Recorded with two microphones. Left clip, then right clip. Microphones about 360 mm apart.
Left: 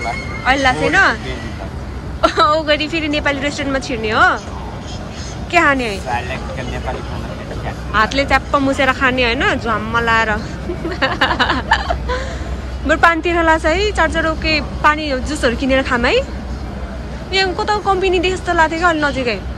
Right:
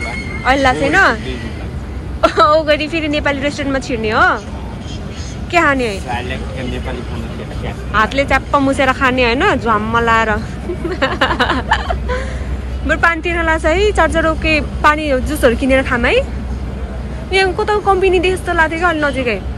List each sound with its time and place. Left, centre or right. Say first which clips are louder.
0.5 s speech: right 1 dB; centre
2.2 s speech: right 2 dB; centre
5.5 s speech: even; centre
7.9 s speech: right 1 dB; centre
17.3 s speech: right 2 dB; centre